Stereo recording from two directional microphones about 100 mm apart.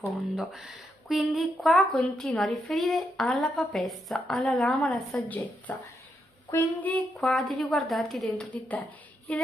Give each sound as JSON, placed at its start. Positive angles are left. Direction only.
{"t": 0.4, "sound": "a woman's voice", "side_deg": -5}
{"t": 5.1, "sound": "a woman's voice", "side_deg": 15}
{"t": 7.2, "sound": "a woman's voice", "side_deg": 0}
{"t": 8.5, "sound": "a woman's voice", "side_deg": 15}